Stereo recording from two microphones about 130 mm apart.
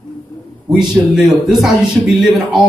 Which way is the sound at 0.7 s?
5° right (ahead or behind).